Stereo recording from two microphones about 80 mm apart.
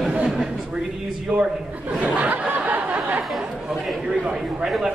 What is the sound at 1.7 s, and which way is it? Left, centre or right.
Speech, centre.